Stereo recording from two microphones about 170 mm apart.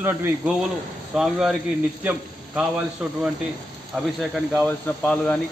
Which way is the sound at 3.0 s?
5° right (ahead or behind).